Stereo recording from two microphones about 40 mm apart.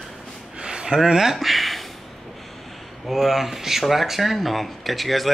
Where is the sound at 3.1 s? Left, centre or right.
Centre.